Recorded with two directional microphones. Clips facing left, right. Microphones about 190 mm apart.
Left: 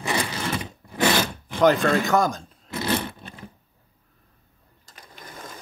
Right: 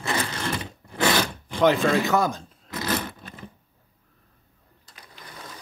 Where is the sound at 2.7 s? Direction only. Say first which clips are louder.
Left 2 dB; 30° left (ahead or behind).